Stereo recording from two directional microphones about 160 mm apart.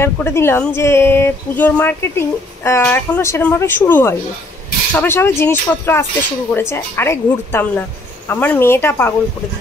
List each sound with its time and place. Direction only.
0.0 s speech: 15° left (ahead or behind)